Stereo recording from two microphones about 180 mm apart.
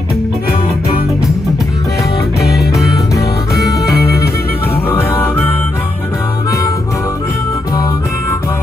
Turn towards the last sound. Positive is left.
turn(degrees=20)  # may be behind; listen again after turning